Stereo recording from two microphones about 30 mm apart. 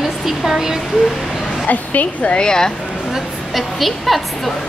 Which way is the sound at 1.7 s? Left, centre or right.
Left.